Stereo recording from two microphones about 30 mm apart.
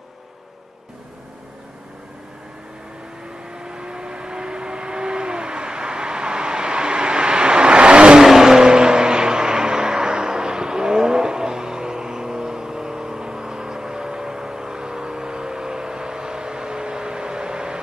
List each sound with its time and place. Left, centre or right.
3.5 s vehicle: right
8.2 s vehicle: centre
8.5 s vehicle: right